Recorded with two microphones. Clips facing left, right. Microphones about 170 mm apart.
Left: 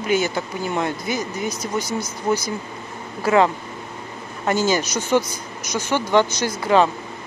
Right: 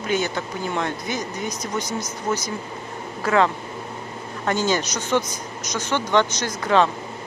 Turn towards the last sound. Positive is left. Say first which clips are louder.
# left 2 dB
turn(degrees=10)  # may be behind; listen again after turning